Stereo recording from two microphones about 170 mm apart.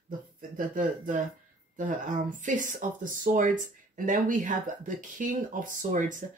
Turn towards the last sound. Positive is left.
turn(degrees=-50)  # may be behind; listen again after turning